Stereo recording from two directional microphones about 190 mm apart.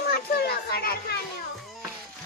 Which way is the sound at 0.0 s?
55° left (ahead or behind).